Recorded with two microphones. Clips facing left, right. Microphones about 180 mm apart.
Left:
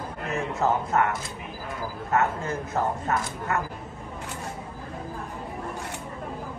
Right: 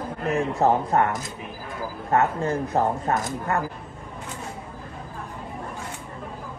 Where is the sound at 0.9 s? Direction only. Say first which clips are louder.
Right 2 dB; 35° right (ahead or behind).